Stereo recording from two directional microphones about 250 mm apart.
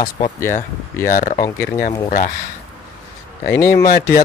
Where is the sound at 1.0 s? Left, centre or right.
Left.